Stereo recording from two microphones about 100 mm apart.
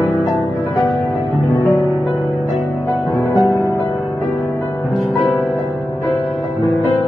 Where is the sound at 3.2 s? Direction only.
25° left (ahead or behind).